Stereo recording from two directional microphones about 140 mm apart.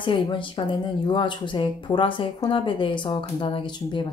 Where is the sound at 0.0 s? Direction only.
35° left (ahead or behind).